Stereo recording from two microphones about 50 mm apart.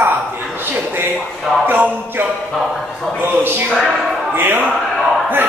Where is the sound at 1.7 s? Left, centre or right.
Right.